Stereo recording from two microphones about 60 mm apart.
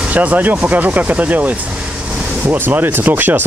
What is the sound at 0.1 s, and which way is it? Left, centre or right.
Speech, right.